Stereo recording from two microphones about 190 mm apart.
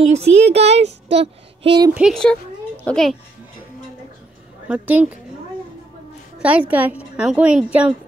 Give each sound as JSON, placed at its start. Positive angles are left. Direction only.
{"t": 0.0, "sound": "speech", "side_deg": -35}
{"t": 1.1, "sound": "child singing", "side_deg": -30}
{"t": 2.0, "sound": "speech", "side_deg": 0}
{"t": 4.6, "sound": "a woman's voice", "side_deg": -5}
{"t": 6.4, "sound": "a woman's voice", "side_deg": -5}